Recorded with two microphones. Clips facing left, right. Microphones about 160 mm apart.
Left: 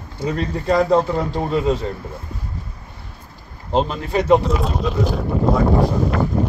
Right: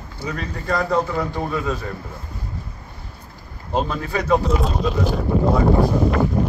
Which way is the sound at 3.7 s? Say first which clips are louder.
Left 3 dB; 20° left (ahead or behind).